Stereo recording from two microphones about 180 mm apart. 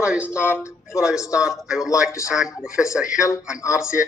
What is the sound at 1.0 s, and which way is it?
Speech, 5° right (ahead or behind).